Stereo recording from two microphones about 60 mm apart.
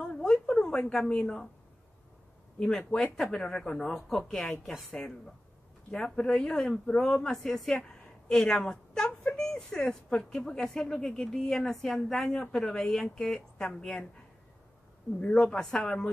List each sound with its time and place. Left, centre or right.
0.0 s a sound: centre
2.8 s a woman's voice: centre
15.1 s a woman's voice: centre